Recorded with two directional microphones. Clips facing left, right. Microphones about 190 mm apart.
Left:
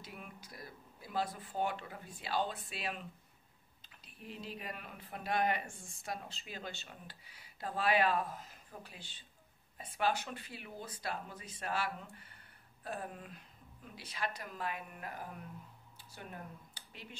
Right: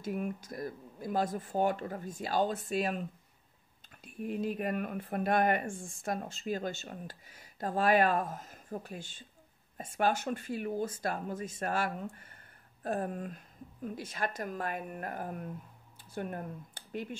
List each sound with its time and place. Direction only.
0.0 s speech: 45° right (ahead or behind)